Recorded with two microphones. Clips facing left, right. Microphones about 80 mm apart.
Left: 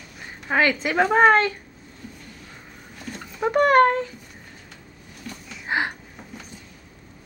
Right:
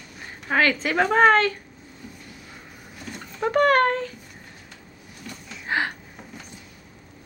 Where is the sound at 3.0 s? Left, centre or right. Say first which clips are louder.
Left 1 dB; centre.